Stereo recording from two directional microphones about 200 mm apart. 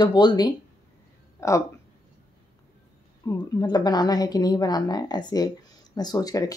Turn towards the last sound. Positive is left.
turn(degrees=20)  # may be behind; listen again after turning